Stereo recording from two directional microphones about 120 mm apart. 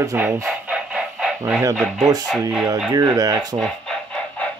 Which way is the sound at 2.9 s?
35° right (ahead or behind).